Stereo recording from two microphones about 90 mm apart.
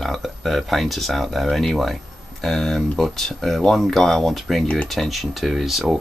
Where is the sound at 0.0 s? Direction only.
Centre (ahead or behind).